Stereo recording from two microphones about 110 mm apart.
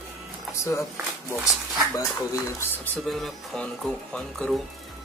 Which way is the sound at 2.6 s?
15° left (ahead or behind).